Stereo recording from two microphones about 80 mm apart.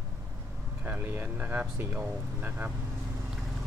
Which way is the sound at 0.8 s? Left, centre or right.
Right.